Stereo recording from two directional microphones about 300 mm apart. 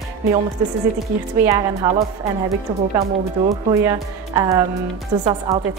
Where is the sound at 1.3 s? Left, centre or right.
Centre.